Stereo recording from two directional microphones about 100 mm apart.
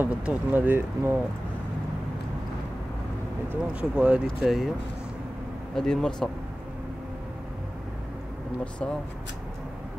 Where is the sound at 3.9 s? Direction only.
10° right (ahead or behind).